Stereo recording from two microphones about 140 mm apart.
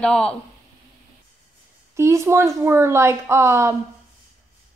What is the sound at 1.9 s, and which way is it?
A woman's voice, 20° right (ahead or behind).